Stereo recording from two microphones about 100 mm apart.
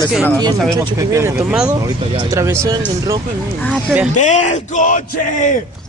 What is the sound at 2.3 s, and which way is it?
Speech, 30° right (ahead or behind).